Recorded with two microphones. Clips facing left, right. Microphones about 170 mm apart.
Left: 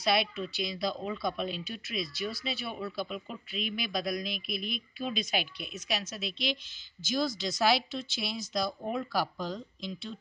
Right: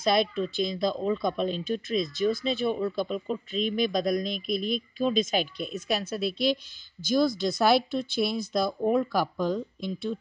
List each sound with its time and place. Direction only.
0.0 s speech: 45° right (ahead or behind)